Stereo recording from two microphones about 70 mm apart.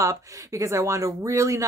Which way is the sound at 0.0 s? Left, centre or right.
Right.